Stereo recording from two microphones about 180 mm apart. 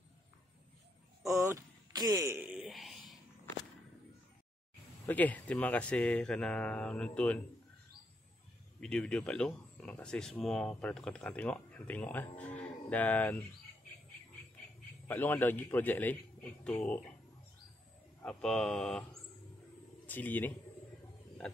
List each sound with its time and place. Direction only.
1.2 s a sound: 15° right (ahead or behind); by 3.2 s centre (ahead or behind)
5.0 s speech: 10° left (ahead or behind)
8.7 s speech: 5° left (ahead or behind)
15.0 s speech: 10° left (ahead or behind)
18.4 s speech: 5° left (ahead or behind)
20.1 s speech: 10° left (ahead or behind)